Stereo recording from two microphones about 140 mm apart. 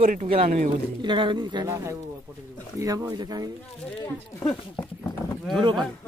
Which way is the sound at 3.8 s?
10° left (ahead or behind).